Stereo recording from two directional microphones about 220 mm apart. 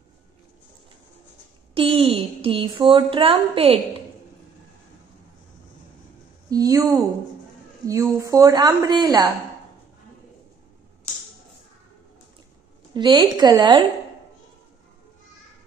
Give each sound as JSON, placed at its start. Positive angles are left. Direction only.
{"t": 1.7, "sound": "speech", "side_deg": -25}
{"t": 6.5, "sound": "a woman's voice", "side_deg": -15}
{"t": 12.9, "sound": "speech", "side_deg": -20}